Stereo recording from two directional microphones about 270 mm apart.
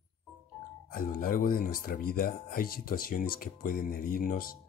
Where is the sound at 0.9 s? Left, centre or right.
Left.